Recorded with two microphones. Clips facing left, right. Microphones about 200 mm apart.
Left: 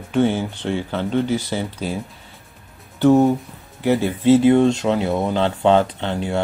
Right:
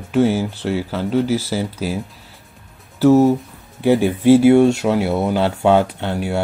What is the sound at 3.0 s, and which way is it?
Speech, 5° right (ahead or behind).